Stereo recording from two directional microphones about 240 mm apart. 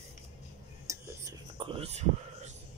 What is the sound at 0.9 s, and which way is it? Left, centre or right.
Whispering, centre.